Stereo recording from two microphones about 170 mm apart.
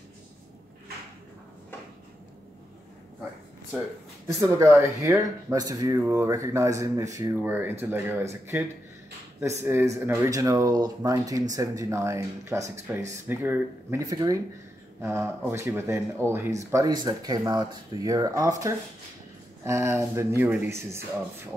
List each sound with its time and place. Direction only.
3.7 s speech: 5° right (ahead or behind)
4.3 s speech: 20° right (ahead or behind)